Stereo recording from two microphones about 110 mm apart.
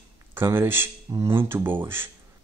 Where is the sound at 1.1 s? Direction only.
35° right (ahead or behind).